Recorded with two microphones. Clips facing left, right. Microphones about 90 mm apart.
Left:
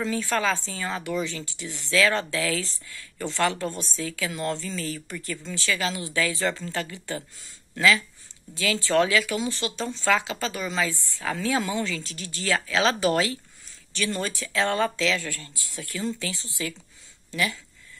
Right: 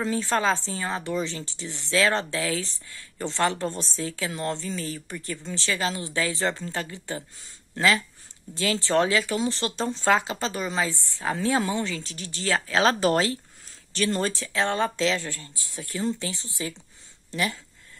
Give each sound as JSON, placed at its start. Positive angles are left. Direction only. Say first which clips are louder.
{"t": 0.0, "sound": "a woman's voice", "louder": "right 1 dB", "side_deg": -30}
{"t": 8.8, "sound": "a woman's voice", "louder": "left 1 dB", "side_deg": -25}
{"t": 9.6, "sound": "speech", "louder": "right 2 dB", "side_deg": -40}
{"t": 10.3, "sound": "a woman's voice", "louder": "right 1 dB", "side_deg": -25}
{"t": 15.0, "sound": "speech", "louder": "right 1 dB", "side_deg": -35}
{"t": 15.2, "sound": "a woman's voice", "louder": "left 1 dB", "side_deg": -20}
{"t": 17.3, "sound": "speech", "louder": "even", "side_deg": -30}